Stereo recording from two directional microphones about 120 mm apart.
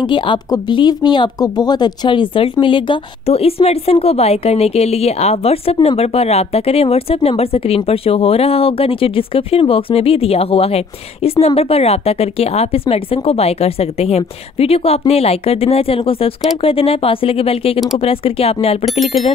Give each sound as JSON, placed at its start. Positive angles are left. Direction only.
{"t": 0.0, "sound": "speech", "side_deg": 40}